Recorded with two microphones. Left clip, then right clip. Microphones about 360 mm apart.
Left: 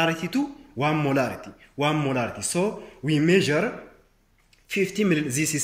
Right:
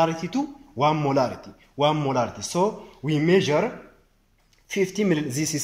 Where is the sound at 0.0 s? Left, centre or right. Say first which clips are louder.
Right 1 dB; centre.